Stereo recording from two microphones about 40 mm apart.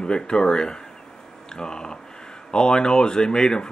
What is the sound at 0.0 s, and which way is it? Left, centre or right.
Speech, left.